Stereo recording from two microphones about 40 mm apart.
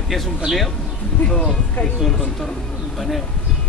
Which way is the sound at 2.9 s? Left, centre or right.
Centre.